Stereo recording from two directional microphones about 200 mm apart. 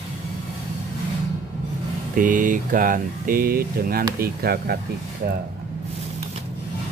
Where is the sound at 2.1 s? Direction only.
40° right (ahead or behind).